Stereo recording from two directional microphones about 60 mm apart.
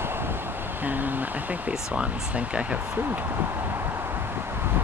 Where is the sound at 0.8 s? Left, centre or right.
Right.